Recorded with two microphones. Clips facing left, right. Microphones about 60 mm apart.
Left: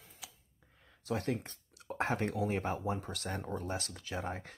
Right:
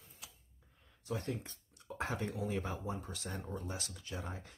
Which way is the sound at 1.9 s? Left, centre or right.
Left.